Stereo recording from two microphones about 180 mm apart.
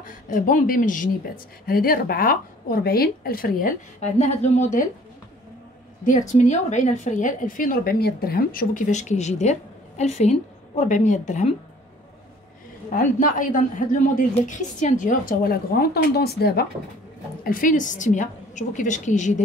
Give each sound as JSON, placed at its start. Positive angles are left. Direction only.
{"t": 0.0, "sound": "a woman's voice", "side_deg": 45}
{"t": 6.0, "sound": "a woman's voice", "side_deg": 45}
{"t": 12.9, "sound": "a woman's voice", "side_deg": 50}
{"t": 17.4, "sound": "a woman's voice", "side_deg": 50}